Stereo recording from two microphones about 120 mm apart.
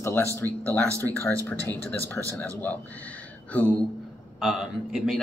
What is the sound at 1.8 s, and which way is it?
Speech, 15° left (ahead or behind).